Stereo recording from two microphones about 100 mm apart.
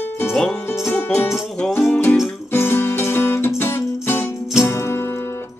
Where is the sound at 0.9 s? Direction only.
25° left (ahead or behind).